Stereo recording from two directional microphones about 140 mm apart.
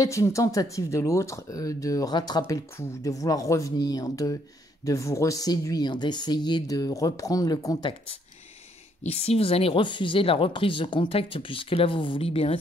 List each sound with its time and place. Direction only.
0.0 s speech: 20° left (ahead or behind)
9.0 s speech: 45° left (ahead or behind)